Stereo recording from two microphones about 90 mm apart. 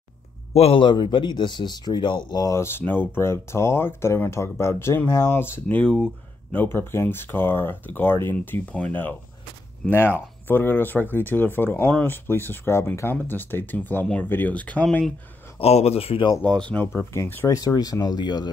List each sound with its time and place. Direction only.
0.7 s speech: 65° left (ahead or behind)
2.4 s speech: 35° left (ahead or behind)
2.8 s speech: 25° left (ahead or behind)
5.8 s speech: 10° left (ahead or behind)
6.5 s speech: 25° left (ahead or behind)
15.6 s speech: 90° left
16.4 s speech: 10° left (ahead or behind)
16.8 s speech: 30° left (ahead or behind)
17.5 s speech: 45° left (ahead or behind)